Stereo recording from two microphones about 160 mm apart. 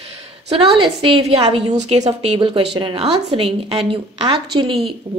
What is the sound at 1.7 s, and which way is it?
Speech, 45° right (ahead or behind).